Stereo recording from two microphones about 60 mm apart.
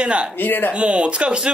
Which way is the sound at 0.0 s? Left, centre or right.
Centre.